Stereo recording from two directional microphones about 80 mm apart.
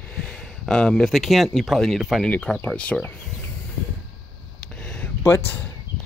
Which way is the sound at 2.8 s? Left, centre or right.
Centre.